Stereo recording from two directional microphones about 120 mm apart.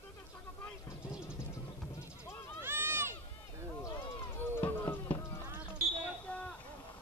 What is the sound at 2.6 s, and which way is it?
Run, 20° right (ahead or behind).